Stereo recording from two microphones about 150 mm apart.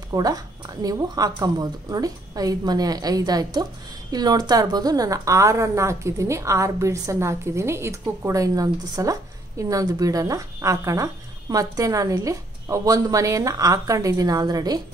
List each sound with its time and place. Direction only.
0.1 s a woman's voice: 25° right (ahead or behind)